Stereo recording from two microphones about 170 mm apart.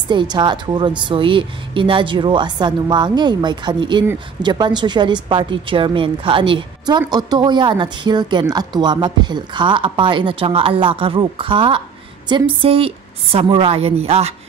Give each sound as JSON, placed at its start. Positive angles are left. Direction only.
{"t": 0.1, "sound": "a woman's voice", "side_deg": -25}